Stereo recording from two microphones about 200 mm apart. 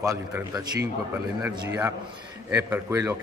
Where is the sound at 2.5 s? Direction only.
15° right (ahead or behind).